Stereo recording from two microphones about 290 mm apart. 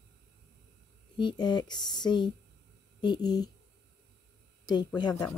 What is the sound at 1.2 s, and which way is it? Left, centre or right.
Speech, centre.